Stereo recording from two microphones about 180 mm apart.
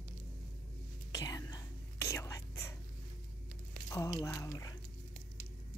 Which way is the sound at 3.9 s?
20° left (ahead or behind).